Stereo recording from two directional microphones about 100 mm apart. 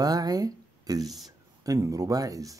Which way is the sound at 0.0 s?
40° right (ahead or behind).